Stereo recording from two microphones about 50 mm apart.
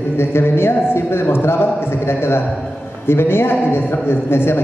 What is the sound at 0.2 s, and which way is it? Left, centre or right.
A man's voice, left.